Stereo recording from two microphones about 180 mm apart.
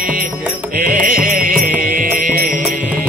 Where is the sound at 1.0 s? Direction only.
50° right (ahead or behind).